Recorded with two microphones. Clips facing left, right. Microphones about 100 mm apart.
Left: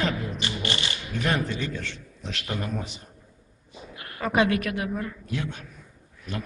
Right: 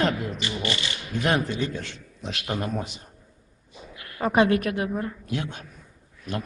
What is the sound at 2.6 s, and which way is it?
Speech, 20° right (ahead or behind).